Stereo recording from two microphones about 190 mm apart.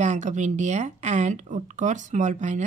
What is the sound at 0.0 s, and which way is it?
Speech, 40° right (ahead or behind).